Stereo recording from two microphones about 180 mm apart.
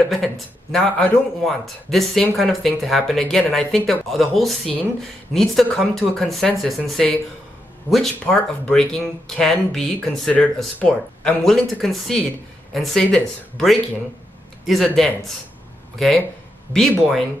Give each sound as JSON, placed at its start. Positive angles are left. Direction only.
{"t": 0.1, "sound": "a man's voice", "side_deg": 0}